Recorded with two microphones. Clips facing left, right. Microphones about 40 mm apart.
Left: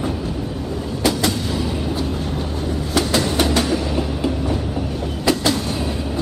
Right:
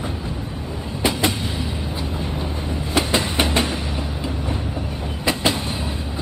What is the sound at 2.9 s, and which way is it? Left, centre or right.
Train, right.